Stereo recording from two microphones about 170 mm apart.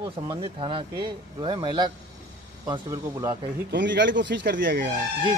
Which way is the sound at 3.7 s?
90° right.